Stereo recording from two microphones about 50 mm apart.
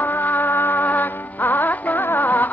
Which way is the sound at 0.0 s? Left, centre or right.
Left.